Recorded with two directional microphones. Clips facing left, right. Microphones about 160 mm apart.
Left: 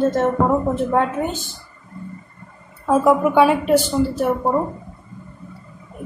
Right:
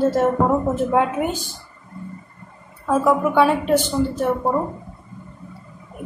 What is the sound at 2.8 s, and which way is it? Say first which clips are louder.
A woman's voice: left 2 dB; 20° left (ahead or behind).